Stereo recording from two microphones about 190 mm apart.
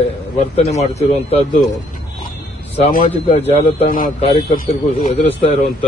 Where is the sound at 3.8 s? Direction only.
45° left (ahead or behind).